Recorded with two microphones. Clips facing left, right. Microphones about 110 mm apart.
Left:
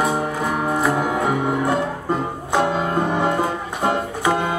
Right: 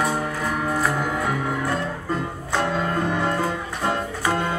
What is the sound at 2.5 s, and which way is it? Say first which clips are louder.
Music: left 4 dB; 15° left (ahead or behind).